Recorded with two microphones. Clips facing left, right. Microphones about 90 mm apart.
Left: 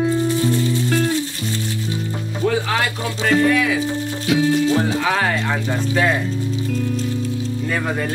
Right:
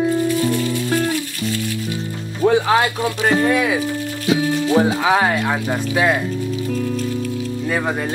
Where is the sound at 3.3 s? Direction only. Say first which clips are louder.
Left 2 dB; 25° right (ahead or behind).